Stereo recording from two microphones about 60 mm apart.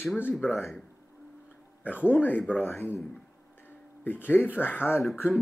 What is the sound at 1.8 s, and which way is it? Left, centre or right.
Speech, left.